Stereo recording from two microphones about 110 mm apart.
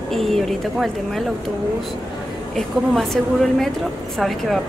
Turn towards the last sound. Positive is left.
turn(degrees=0)  # may be behind; listen again after turning